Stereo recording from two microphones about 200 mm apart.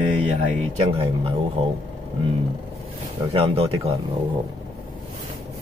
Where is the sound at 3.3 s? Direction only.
30° right (ahead or behind).